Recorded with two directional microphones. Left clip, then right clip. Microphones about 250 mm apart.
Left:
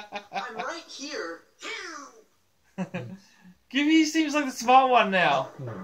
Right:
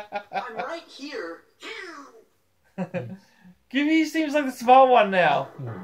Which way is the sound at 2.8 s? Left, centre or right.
Centre.